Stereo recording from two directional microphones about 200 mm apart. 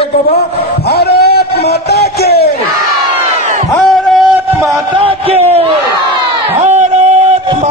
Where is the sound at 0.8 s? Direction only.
50° left (ahead or behind).